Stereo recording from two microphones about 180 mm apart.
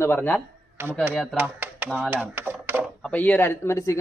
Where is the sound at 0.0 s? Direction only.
10° left (ahead or behind).